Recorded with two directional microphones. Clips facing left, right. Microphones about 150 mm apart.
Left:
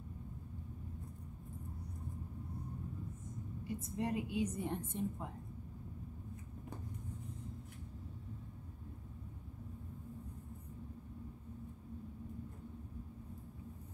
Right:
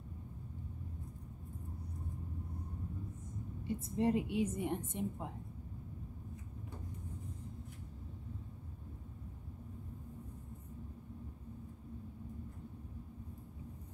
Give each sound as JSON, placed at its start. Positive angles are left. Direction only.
{"t": 3.6, "sound": "a woman's voice", "side_deg": -30}